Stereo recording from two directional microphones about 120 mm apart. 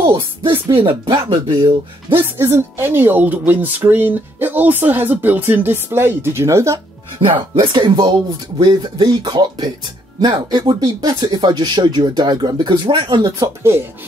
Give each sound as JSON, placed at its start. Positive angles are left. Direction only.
{"t": 0.0, "sound": "speech", "side_deg": -40}
{"t": 2.1, "sound": "speech", "side_deg": -20}
{"t": 7.2, "sound": "speech", "side_deg": -45}
{"t": 13.4, "sound": "speech", "side_deg": -20}